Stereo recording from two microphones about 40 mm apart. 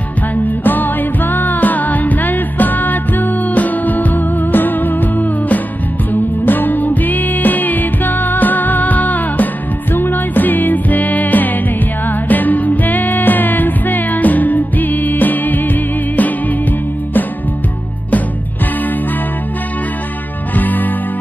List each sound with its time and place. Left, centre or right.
0.7 s music: left
9.9 s music: left
20.5 s music: left